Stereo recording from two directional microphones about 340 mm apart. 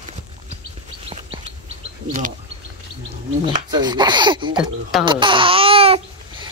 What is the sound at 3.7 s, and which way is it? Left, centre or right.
Speech, centre.